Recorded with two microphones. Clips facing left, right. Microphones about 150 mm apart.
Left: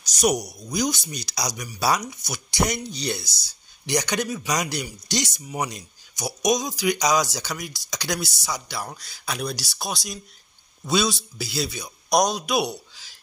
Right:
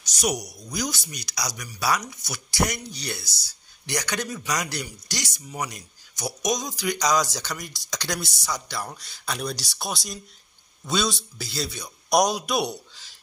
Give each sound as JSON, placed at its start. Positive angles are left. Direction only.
{"t": 0.0, "sound": "a sound", "side_deg": 45}
{"t": 0.6, "sound": "speech", "side_deg": 15}
{"t": 6.2, "sound": "speech", "side_deg": 10}
{"t": 12.2, "sound": "a man's voice", "side_deg": -5}
{"t": 12.5, "sound": "speech", "side_deg": 5}